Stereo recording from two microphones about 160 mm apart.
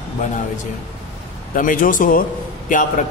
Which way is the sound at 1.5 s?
55° left (ahead or behind).